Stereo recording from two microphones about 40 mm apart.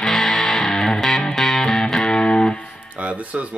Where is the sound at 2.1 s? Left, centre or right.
Left.